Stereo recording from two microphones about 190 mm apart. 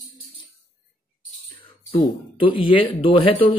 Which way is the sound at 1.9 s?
30° left (ahead or behind).